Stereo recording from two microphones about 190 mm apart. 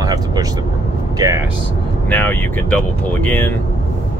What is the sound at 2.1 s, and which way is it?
Speech, 10° left (ahead or behind).